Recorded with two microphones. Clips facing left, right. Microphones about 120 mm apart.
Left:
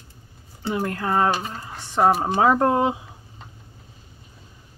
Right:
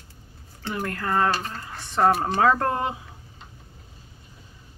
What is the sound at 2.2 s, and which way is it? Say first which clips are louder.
Speech: left 3 dB; 15° left (ahead or behind).